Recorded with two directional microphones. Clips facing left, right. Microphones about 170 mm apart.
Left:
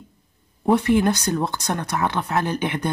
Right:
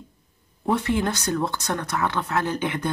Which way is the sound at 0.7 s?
15° left (ahead or behind).